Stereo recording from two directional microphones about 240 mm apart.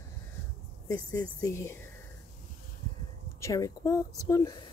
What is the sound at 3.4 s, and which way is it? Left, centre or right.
Speech, centre.